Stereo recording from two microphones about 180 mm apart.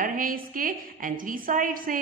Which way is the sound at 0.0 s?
50° right (ahead or behind).